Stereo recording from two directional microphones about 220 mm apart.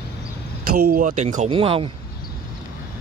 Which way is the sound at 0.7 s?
40° right (ahead or behind).